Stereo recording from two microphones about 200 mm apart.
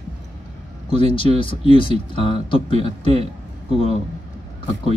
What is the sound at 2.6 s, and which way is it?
Speech, 35° right (ahead or behind).